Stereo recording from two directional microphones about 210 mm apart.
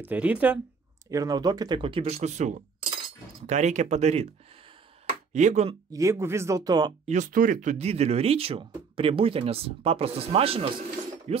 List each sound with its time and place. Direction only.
0.0 s speech: 5° right (ahead or behind)
1.1 s speech: 15° right (ahead or behind)
5.3 s speech: 35° right (ahead or behind)
5.9 s speech: 15° right (ahead or behind)
7.1 s speech: 40° right (ahead or behind)